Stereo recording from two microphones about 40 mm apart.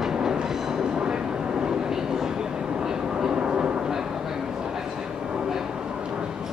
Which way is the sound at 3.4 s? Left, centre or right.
Right.